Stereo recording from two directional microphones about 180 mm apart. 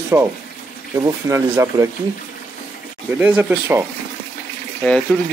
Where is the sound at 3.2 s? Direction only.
10° right (ahead or behind).